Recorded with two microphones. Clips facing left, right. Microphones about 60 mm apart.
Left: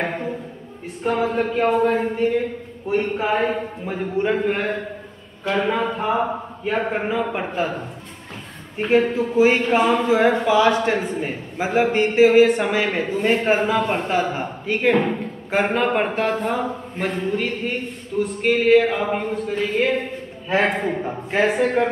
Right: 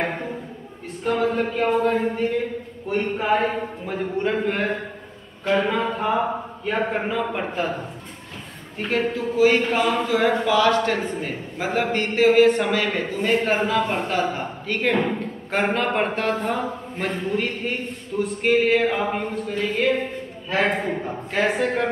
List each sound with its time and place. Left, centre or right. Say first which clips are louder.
1.0 s a man's voice: left 1 dB; centre
8.8 s a man's voice: left 5 dB; centre
21.4 s a man's voice: left 3 dB; centre